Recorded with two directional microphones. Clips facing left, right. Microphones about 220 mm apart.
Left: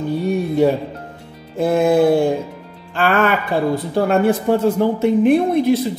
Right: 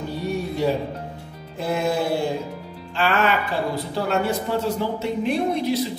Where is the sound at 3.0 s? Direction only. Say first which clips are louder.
Left 4 dB; 50° left (ahead or behind).